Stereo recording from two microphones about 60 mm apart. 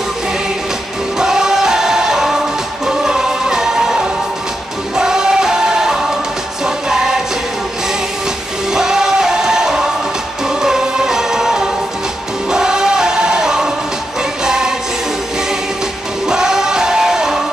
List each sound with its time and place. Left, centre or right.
1.1 s music: centre
8.7 s music: centre
16.3 s music: centre